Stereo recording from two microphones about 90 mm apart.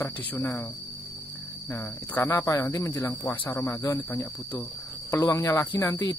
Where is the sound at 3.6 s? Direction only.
35° left (ahead or behind).